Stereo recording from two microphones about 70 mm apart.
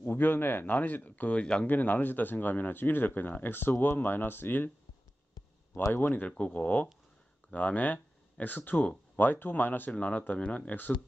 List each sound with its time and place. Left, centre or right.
0.1 s speech: left
1.4 s speech: centre
1.7 s speech: left
5.9 s speech: left
6.2 s speech: centre